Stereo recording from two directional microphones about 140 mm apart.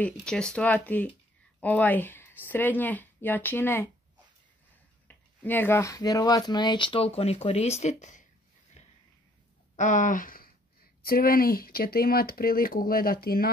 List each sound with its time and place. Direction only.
0.0 s speech: 5° left (ahead or behind)
5.0 s speech: 10° left (ahead or behind); by 7.7 s 50° left (ahead or behind)
7.8 s speech: 60° left (ahead or behind)
8.8 s a sound: 55° left (ahead or behind)
9.8 s speech: 60° left (ahead or behind); by 13.5 s 90° left